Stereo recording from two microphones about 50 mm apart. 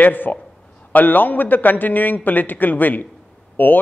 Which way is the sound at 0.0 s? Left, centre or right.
Left.